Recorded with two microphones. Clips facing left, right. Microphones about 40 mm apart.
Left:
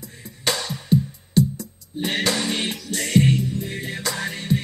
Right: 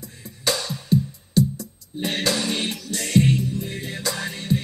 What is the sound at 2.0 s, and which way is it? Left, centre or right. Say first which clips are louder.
Music: left 1 dB; left.